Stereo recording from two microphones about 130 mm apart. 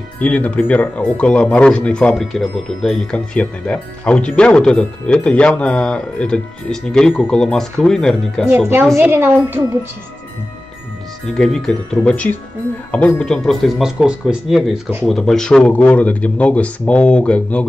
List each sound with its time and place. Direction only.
0.2 s speech: 10° left (ahead or behind)
8.5 s a woman's voice: 15° right (ahead or behind)
11.2 s speech: 5° left (ahead or behind)